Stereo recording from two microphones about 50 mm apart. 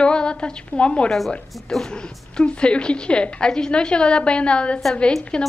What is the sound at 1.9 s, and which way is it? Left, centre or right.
A woman's voice, centre.